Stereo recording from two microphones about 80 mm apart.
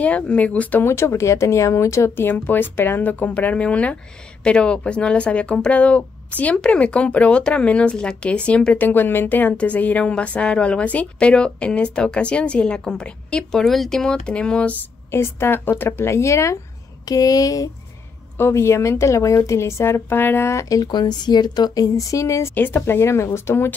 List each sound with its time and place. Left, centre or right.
0.0 s speech: centre
0.8 s speech: left; by 14.8 s centre
15.0 s a woman's voice: left
17.1 s a woman's voice: left
18.4 s a woman's voice: left
20.7 s a woman's voice: left
22.6 s a woman's voice: left